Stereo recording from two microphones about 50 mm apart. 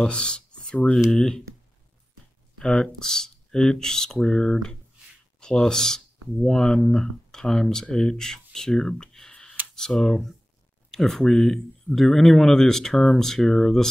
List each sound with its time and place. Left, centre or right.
0.0 s a sound: centre
1.1 s speech: centre
2.6 s speech: centre
9.8 s speech: centre